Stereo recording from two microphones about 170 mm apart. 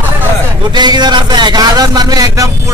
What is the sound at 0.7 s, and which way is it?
A man's voice, 25° right (ahead or behind).